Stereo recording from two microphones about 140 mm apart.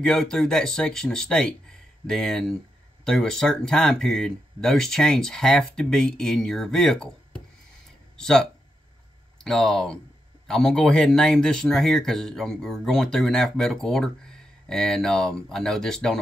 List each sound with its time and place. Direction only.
0.0 s speech: 5° left (ahead or behind)